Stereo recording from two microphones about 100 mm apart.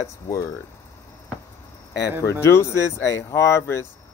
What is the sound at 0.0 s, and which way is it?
Speech, 35° left (ahead or behind).